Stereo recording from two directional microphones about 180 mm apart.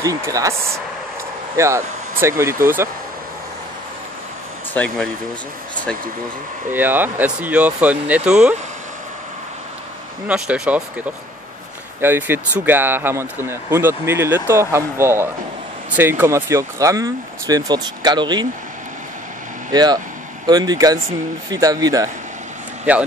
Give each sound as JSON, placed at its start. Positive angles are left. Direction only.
{"t": 0.0, "sound": "speech", "side_deg": -20}
{"t": 2.2, "sound": "speech", "side_deg": -15}
{"t": 4.7, "sound": "speech", "side_deg": 5}
{"t": 6.7, "sound": "speech", "side_deg": -10}
{"t": 10.2, "sound": "speech", "side_deg": -5}
{"t": 12.0, "sound": "speech", "side_deg": -10}
{"t": 19.7, "sound": "speech", "side_deg": -20}